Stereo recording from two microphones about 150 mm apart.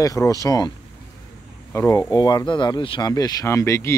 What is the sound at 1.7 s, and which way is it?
Speech, 20° left (ahead or behind).